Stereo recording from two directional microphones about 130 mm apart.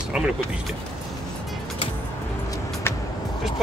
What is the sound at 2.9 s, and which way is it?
Vehicle, 20° left (ahead or behind).